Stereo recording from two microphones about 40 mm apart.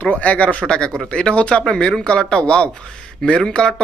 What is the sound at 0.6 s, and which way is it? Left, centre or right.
Speech, left.